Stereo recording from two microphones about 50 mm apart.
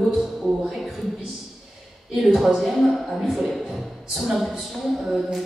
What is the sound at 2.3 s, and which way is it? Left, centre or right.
Mantra, centre.